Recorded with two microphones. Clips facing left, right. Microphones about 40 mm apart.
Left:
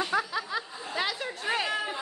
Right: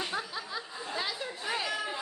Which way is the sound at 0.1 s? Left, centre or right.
Left.